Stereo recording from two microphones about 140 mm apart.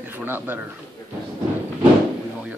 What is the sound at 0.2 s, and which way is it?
Speech, 15° right (ahead or behind).